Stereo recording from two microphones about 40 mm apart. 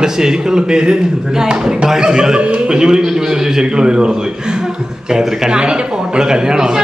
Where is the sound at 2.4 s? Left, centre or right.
Right.